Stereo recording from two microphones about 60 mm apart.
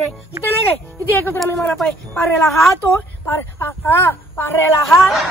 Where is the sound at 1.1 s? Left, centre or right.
Left.